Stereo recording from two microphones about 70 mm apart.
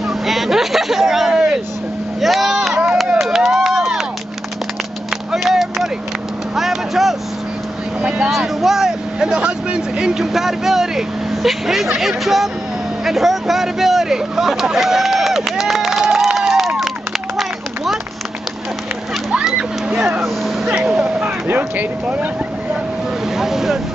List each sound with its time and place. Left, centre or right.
0.3 s vehicle: centre
3.1 s a sound: centre
5.3 s a sound: centre
6.5 s vehicle: centre
8.3 s speech: centre
19.3 s splash: centre
20.6 s speech: centre
23.3 s speech: centre